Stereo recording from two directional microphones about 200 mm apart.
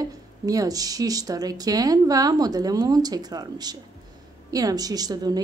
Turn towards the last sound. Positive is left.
turn(degrees=-20)  # may be behind; listen again after turning